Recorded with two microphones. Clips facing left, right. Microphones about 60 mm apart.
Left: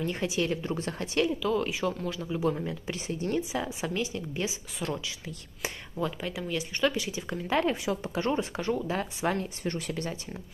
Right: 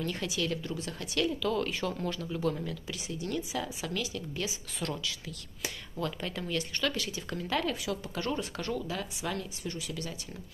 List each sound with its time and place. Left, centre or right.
0.0 s speech: left
1.2 s speech: centre
2.2 s speech: centre
8.8 s speech: left